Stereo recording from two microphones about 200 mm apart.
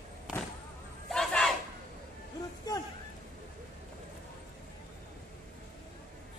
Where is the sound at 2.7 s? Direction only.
20° left (ahead or behind).